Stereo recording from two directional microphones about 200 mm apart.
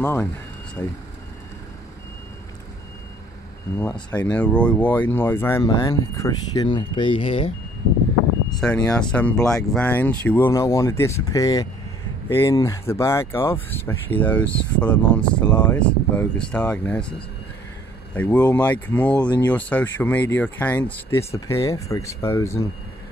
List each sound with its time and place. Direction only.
0.0 s speech: 10° left (ahead or behind)
4.1 s speech: 5° left (ahead or behind); by 7.5 s 25° left (ahead or behind)
8.5 s speech: 5° left (ahead or behind)
15.4 s speech: 20° left (ahead or behind)
15.7 s speech: 5° left (ahead or behind)
18.1 s speech: 10° left (ahead or behind)